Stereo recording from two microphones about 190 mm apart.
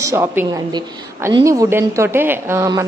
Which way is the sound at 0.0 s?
15° right (ahead or behind).